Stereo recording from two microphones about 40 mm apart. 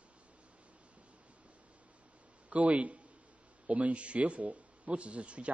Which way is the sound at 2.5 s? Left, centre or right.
Right.